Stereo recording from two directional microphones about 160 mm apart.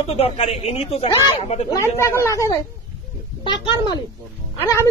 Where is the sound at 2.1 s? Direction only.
20° left (ahead or behind).